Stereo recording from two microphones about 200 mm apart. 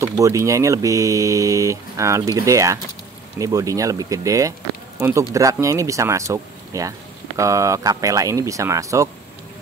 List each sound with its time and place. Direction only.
0.0 s speech: 15° right (ahead or behind)